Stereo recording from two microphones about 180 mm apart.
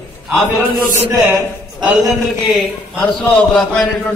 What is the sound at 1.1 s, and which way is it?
Speech, 15° right (ahead or behind).